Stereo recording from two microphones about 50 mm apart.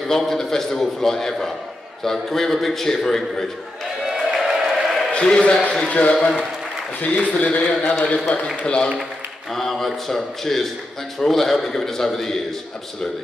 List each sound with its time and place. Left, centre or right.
0.0 s a man's voice: centre
4.1 s a sound: centre
5.1 s a man's voice: left
6.1 s a man's voice: centre
7.2 s a man's voice: left
9.5 s a man's voice: centre